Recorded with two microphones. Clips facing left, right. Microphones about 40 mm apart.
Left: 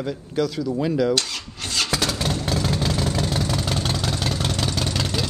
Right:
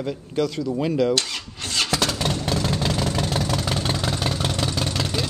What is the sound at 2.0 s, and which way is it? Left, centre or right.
Vehicle, centre.